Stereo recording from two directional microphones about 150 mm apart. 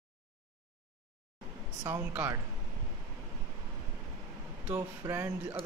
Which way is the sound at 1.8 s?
15° right (ahead or behind).